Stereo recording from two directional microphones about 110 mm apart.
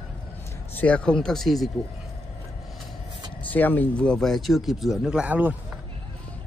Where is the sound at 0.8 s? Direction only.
10° left (ahead or behind).